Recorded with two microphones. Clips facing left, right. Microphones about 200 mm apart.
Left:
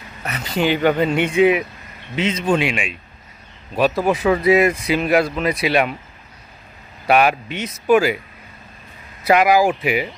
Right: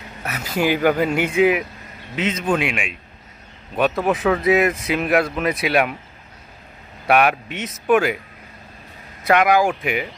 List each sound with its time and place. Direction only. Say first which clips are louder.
0.2 s speech: left 1 dB; 5° right (ahead or behind)
7.1 s speech: left 1 dB; centre (ahead or behind)
9.2 s speech: left 2 dB; 5° left (ahead or behind)